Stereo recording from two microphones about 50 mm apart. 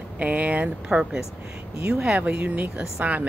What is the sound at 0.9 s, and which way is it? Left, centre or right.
Speech, centre.